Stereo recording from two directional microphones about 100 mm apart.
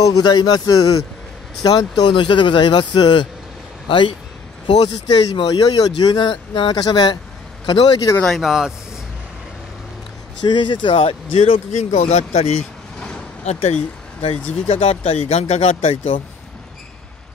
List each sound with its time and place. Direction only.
0.0 s a man's voice: 45° left (ahead or behind)
8.2 s speech: centre (ahead or behind)
10.4 s speech: 50° left (ahead or behind); by 16.2 s 80° left